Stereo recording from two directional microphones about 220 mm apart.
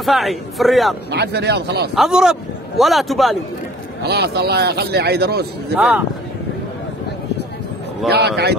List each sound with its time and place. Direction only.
0.0 s speech: centre (ahead or behind)
1.1 s a man's voice: 50° right (ahead or behind)
2.0 s speech: 5° right (ahead or behind)
4.0 s a man's voice: 50° right (ahead or behind)
5.8 s speech: 5° right (ahead or behind)
8.1 s a man's voice: 50° right (ahead or behind)